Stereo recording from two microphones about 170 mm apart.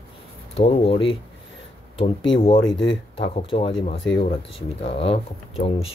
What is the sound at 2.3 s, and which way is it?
Speech, 35° left (ahead or behind).